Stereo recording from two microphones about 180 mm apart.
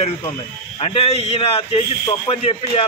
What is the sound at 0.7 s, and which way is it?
A man's voice, 35° left (ahead or behind).